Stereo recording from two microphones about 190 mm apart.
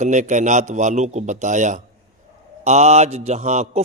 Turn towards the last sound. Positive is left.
turn(degrees=-35)  # may be behind; listen again after turning